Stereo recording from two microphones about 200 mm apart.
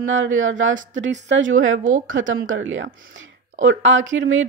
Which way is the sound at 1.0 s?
65° right (ahead or behind).